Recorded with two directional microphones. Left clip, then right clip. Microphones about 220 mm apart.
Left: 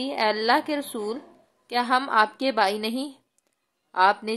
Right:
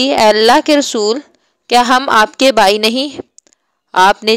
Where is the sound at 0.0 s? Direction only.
35° right (ahead or behind).